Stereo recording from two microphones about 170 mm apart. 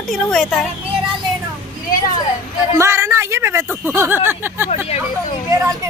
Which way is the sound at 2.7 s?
15° right (ahead or behind).